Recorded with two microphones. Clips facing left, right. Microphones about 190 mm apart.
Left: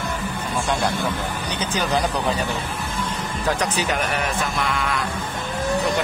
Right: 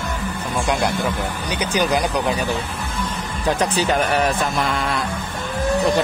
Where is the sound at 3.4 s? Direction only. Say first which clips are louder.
Right 4 dB; 30° right (ahead or behind).